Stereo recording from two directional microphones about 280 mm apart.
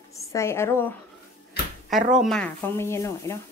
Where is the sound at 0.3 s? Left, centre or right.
Centre.